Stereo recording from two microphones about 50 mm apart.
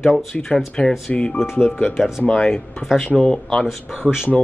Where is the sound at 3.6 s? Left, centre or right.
Centre.